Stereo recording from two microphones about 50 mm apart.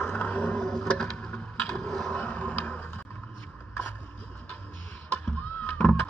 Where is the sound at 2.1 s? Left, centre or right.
Left.